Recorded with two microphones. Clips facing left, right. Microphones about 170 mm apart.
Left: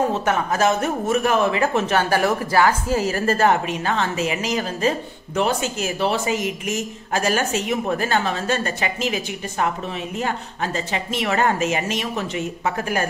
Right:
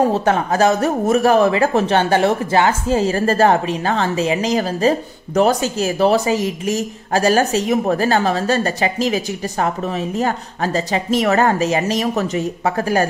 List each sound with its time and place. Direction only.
0.1 s speech: 30° right (ahead or behind)